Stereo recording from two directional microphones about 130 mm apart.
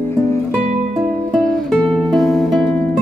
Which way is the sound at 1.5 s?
5° left (ahead or behind).